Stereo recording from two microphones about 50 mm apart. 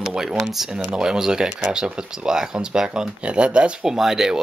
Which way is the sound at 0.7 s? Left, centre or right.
Centre.